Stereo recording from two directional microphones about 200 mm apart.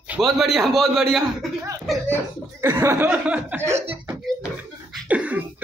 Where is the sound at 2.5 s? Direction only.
15° right (ahead or behind).